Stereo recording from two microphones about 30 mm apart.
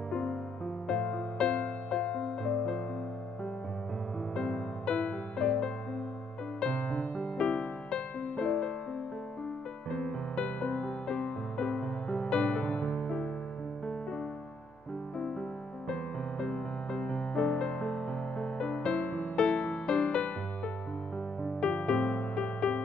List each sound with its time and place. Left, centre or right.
0.8 s music: left
4.4 s music: left
6.7 s music: left
9.8 s music: left
15.9 s music: left
18.9 s music: left
19.3 s music: left